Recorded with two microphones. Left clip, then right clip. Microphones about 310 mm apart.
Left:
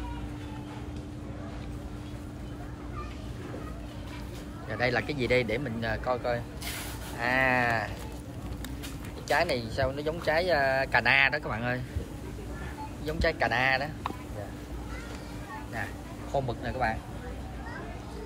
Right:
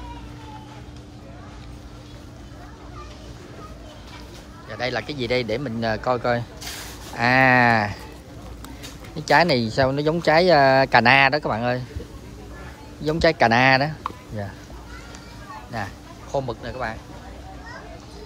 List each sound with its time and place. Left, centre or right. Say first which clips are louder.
4.6 s speech: right 2 dB; centre
9.2 s speech: right 10 dB; centre
13.0 s speech: right 10 dB; centre
15.7 s a sound: right 7 dB; centre
16.4 s speech: right 2 dB; centre